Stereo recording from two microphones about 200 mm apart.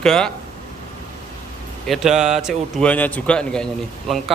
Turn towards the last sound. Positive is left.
turn(degrees=0)  # may be behind; listen again after turning